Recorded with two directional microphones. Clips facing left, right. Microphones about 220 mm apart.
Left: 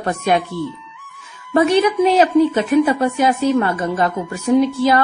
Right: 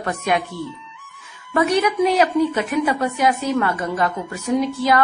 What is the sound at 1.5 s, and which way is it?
A woman's voice, 30° left (ahead or behind).